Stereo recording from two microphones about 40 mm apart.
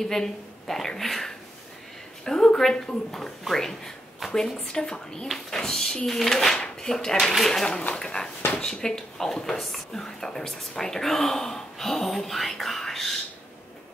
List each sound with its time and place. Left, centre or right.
0.0 s speech: centre
3.1 s speech: centre
4.2 s a sound: centre
4.6 s speech: centre